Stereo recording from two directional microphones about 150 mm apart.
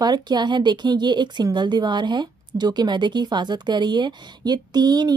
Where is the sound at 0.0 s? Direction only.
30° right (ahead or behind).